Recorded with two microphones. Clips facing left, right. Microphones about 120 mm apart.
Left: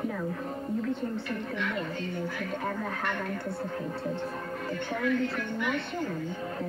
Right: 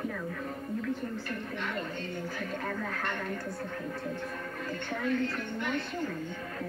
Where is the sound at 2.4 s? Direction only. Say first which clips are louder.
Left 2 dB; 15° left (ahead or behind).